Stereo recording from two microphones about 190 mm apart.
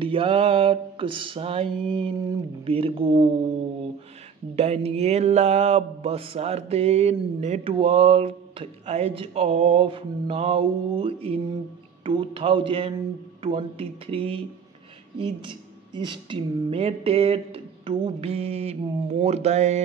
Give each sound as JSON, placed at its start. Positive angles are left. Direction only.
{"t": 0.0, "sound": "music", "side_deg": -30}
{"t": 4.6, "sound": "mantra", "side_deg": -35}
{"t": 12.0, "sound": "music", "side_deg": -25}
{"t": 15.1, "sound": "mantra", "side_deg": -25}